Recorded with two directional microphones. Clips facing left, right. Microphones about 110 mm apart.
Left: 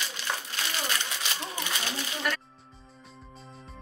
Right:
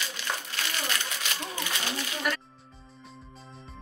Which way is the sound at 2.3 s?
5° right (ahead or behind).